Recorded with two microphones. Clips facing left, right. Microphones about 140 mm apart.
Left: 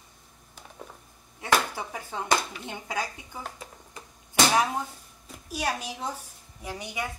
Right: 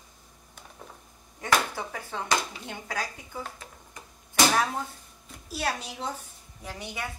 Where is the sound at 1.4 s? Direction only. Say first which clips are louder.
Left 1 dB; 15° left (ahead or behind).